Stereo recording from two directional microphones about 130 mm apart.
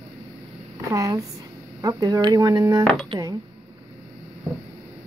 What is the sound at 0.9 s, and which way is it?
Speech, 25° right (ahead or behind).